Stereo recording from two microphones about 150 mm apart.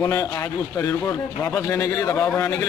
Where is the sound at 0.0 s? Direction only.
20° left (ahead or behind).